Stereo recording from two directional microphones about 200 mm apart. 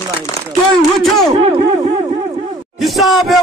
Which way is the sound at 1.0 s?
Centre (ahead or behind).